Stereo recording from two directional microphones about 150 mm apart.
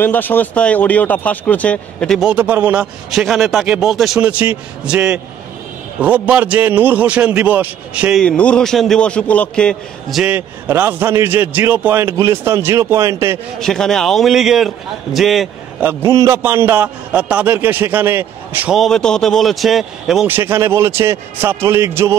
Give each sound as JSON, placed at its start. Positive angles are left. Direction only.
{"t": 0.0, "sound": "a man's voice", "side_deg": 10}
{"t": 8.2, "sound": "speech", "side_deg": 5}
{"t": 10.3, "sound": "a man's voice", "side_deg": -15}
{"t": 13.6, "sound": "speech", "side_deg": 5}
{"t": 15.8, "sound": "a man's voice", "side_deg": -15}
{"t": 18.8, "sound": "speech", "side_deg": 5}
{"t": 20.2, "sound": "a man's voice", "side_deg": -15}